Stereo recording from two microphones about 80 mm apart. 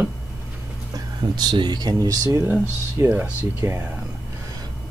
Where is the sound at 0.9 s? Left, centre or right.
Right.